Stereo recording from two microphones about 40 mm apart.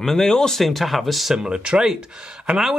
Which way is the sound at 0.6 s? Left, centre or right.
Centre.